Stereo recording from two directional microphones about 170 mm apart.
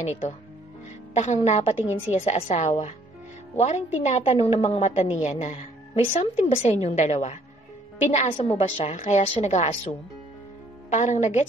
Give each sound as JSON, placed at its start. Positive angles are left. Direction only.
{"t": 1.1, "sound": "a woman's voice", "side_deg": 40}
{"t": 1.8, "sound": "a woman's voice", "side_deg": -10}
{"t": 2.1, "sound": "a woman's voice", "side_deg": 35}